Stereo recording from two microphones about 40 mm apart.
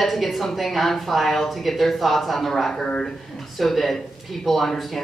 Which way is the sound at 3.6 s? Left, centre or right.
Centre.